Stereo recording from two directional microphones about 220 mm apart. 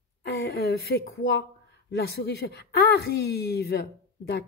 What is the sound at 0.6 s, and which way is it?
A woman's voice, 50° left (ahead or behind).